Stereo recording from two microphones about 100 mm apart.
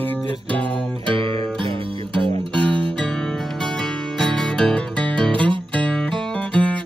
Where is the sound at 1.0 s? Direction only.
55° right (ahead or behind).